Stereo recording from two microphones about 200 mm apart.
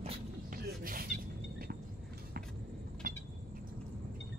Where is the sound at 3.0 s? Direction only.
45° right (ahead or behind).